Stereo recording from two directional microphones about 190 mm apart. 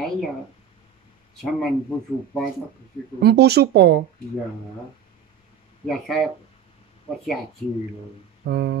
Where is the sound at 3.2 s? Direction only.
60° right (ahead or behind).